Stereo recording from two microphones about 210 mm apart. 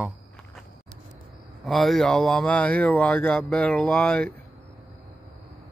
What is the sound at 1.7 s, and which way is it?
Speech, centre (ahead or behind).